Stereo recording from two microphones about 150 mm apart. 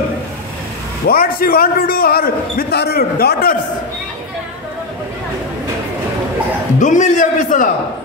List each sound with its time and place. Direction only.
1.0 s a man's voice: 85° left
6.8 s a man's voice: 55° left (ahead or behind)